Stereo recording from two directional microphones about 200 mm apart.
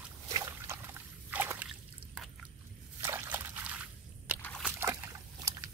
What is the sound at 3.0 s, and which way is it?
Slosh, 10° right (ahead or behind).